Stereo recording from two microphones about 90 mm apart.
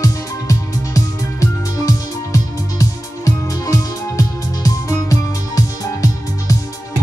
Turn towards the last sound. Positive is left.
turn(degrees=40)  # may be behind; listen again after turning